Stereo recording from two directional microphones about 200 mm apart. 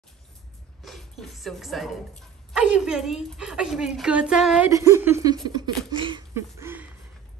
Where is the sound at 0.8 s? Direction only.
Centre (ahead or behind).